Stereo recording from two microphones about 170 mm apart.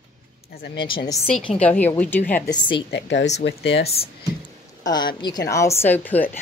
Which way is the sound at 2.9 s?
90° left.